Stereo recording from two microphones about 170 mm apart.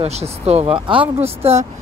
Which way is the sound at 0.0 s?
40° right (ahead or behind).